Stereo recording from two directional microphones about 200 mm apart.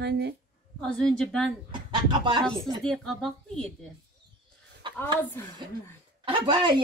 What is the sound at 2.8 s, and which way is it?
Speech, centre (ahead or behind).